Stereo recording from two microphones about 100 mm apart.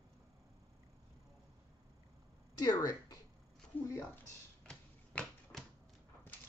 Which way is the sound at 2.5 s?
35° left (ahead or behind).